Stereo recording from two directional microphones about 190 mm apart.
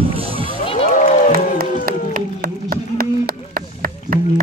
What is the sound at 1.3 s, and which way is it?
Music, 50° right (ahead or behind).